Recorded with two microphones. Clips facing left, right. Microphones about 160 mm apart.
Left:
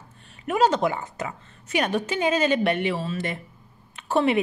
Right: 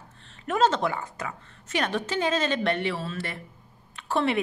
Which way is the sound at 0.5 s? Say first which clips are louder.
Left 2 dB; 15° left (ahead or behind).